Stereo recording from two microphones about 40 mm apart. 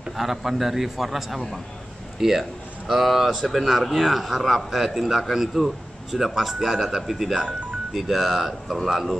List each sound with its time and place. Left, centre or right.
0.2 s a man's voice: centre